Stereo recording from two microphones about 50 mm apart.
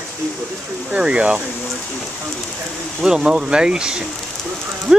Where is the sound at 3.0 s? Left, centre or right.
Centre.